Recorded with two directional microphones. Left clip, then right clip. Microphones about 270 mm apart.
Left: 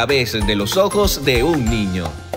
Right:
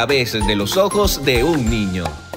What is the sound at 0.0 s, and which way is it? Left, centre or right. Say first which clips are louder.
Speech: even; centre.